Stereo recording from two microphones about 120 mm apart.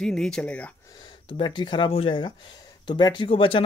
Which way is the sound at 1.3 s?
40° left (ahead or behind).